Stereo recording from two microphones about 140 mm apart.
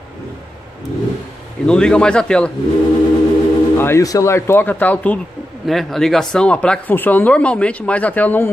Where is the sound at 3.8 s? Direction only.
20° left (ahead or behind).